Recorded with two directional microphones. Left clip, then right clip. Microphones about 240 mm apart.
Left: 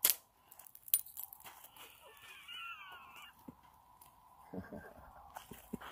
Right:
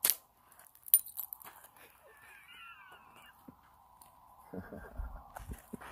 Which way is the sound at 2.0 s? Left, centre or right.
Centre.